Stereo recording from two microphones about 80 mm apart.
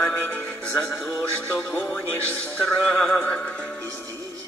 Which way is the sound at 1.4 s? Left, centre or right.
Left.